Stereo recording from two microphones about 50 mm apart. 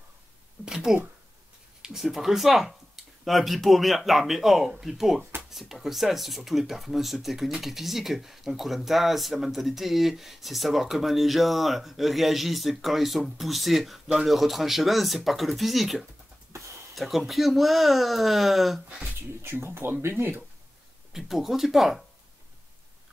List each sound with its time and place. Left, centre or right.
0.7 s a sound: centre
1.8 s speech: centre
16.5 s a sound: right
16.9 s speech: centre
19.4 s speech: right
21.1 s speech: centre